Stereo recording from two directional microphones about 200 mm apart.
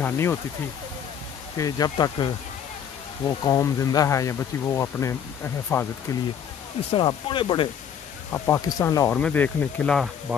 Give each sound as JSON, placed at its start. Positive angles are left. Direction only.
{"t": 0.0, "sound": "speech", "side_deg": 10}
{"t": 1.6, "sound": "speech", "side_deg": 20}
{"t": 6.9, "sound": "speech", "side_deg": 25}